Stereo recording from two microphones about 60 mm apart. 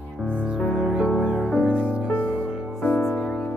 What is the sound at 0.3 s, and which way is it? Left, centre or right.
Music, left.